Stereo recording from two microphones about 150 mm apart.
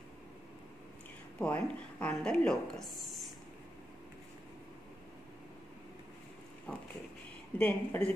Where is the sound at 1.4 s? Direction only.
10° left (ahead or behind).